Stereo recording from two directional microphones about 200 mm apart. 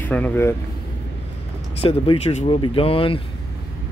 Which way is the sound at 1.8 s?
30° left (ahead or behind).